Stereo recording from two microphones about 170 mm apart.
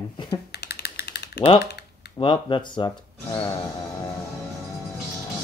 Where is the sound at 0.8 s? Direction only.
80° left.